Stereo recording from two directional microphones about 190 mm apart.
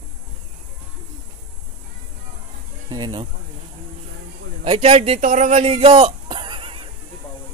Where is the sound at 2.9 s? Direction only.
20° right (ahead or behind).